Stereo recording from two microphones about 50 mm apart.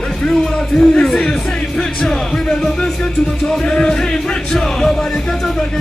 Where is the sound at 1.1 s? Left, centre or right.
Centre.